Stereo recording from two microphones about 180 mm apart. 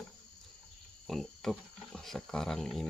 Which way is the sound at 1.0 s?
Centre (ahead or behind).